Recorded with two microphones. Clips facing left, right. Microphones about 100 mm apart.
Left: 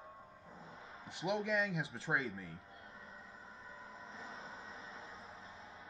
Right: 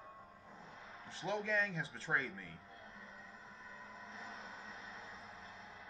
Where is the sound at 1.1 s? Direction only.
30° right (ahead or behind).